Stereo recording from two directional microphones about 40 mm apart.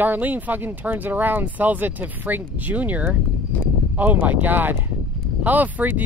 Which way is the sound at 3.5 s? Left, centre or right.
Left.